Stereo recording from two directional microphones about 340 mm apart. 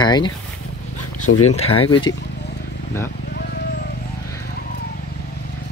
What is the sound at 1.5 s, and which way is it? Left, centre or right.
Speech, centre.